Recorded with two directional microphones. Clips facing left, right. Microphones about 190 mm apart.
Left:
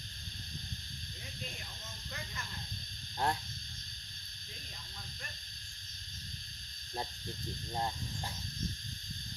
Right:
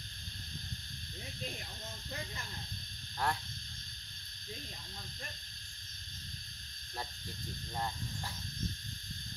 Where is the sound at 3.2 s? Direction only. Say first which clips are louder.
Left 2 dB; 25° left (ahead or behind).